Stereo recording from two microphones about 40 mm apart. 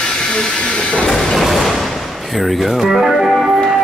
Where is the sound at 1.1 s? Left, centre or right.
Centre.